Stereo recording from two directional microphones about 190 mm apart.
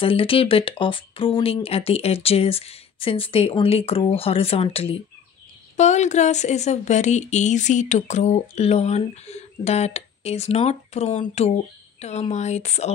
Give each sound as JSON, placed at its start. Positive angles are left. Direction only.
{"t": 0.0, "sound": "speech", "side_deg": 30}